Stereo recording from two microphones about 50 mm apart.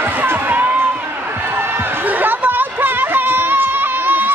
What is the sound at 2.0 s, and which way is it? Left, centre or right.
Music, right.